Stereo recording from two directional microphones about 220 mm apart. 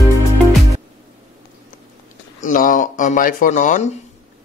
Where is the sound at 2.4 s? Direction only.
35° left (ahead or behind).